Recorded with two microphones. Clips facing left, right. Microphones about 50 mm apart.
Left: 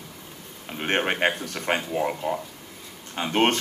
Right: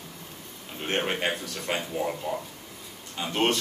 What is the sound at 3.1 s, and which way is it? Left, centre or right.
Speech, left.